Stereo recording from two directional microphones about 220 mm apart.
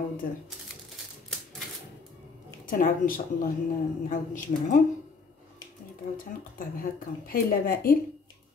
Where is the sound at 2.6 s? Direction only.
40° left (ahead or behind).